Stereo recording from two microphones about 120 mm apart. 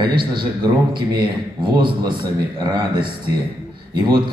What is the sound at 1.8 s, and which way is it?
A man's voice, 40° right (ahead or behind).